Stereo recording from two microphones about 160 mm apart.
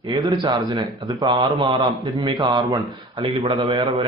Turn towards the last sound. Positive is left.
turn(degrees=-30)  # may be behind; listen again after turning